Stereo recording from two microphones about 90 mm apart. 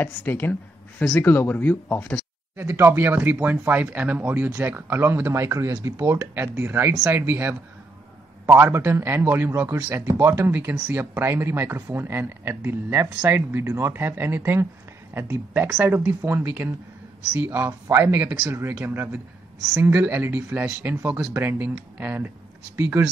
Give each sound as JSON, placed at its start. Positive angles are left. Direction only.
{"t": 0.0, "sound": "speech", "side_deg": 25}
{"t": 2.5, "sound": "speech", "side_deg": -25}